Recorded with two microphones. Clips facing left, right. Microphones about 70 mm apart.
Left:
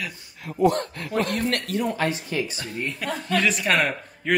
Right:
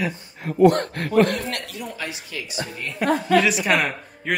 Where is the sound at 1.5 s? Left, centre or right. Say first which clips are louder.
Left 6 dB; left.